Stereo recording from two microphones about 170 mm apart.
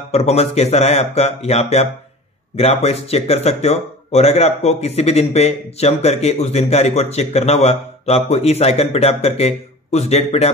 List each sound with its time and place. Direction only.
0.1 s speech: 35° left (ahead or behind)